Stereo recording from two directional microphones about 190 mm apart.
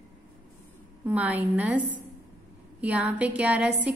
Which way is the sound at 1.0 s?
10° right (ahead or behind).